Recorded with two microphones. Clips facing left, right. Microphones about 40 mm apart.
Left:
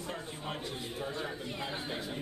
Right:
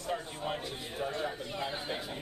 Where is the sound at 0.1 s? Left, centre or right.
Centre.